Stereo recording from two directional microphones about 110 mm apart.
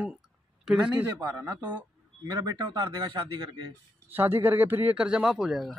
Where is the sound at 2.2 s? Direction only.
40° right (ahead or behind).